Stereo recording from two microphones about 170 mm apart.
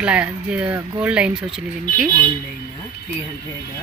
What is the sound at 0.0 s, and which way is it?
Speech, 5° right (ahead or behind).